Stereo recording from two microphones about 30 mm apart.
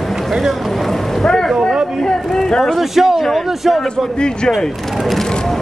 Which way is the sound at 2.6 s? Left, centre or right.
Centre.